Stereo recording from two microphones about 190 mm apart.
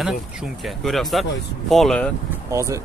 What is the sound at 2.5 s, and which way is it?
Speech, 15° right (ahead or behind).